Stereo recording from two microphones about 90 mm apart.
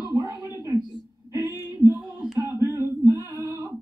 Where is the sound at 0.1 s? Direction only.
35° right (ahead or behind).